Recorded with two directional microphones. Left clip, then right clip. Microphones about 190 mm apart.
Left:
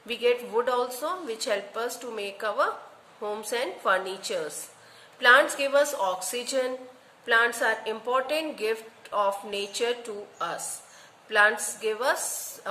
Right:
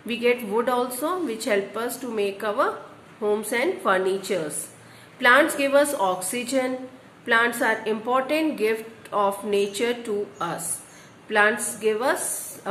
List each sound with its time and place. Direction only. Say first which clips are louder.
0.1 s a woman's voice: right 2 dB; 15° left (ahead or behind)